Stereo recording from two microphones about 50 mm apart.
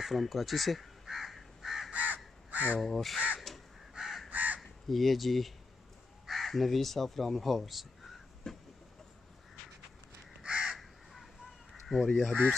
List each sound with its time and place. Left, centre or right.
0.0 s crow: centre
1.9 s crow: right
2.8 s speech: centre
3.3 s crow: centre
4.3 s crow: right
4.6 s speech: centre
8.5 s vehicle: centre
10.4 s crow: centre
11.9 s speech: centre